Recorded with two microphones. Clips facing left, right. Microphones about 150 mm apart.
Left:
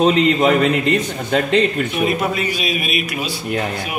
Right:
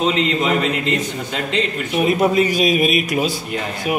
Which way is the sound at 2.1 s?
40° right (ahead or behind).